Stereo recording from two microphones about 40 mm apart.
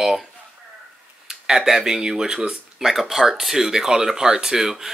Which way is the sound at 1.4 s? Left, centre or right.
Centre.